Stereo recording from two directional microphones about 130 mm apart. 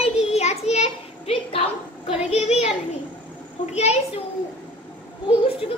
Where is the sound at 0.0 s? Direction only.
55° left (ahead or behind).